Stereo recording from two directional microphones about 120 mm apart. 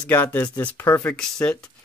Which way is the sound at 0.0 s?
15° left (ahead or behind).